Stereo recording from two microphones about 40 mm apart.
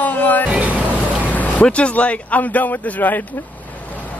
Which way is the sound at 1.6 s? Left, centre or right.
Left.